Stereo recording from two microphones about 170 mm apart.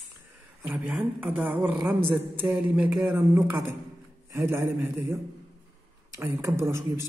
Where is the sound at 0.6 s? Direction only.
10° right (ahead or behind).